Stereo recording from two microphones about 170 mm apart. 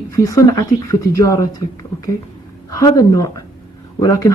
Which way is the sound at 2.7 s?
20° left (ahead or behind).